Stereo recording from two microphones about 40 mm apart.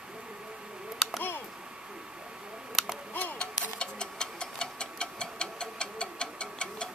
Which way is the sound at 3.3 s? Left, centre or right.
Left.